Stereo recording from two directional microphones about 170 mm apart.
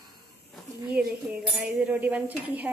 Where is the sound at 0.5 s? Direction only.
5° right (ahead or behind).